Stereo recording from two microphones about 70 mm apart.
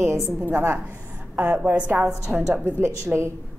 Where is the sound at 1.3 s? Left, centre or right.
Right.